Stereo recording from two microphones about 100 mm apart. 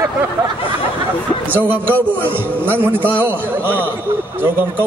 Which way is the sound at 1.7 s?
20° right (ahead or behind).